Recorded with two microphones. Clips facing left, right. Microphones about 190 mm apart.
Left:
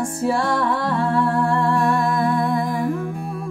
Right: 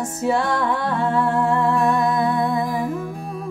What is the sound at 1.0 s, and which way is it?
Humming, centre (ahead or behind).